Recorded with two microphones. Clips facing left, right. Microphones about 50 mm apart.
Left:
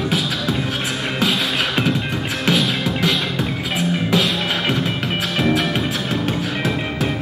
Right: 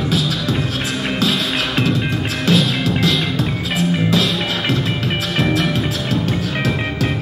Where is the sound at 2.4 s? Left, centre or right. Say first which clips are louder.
Right 2 dB; left.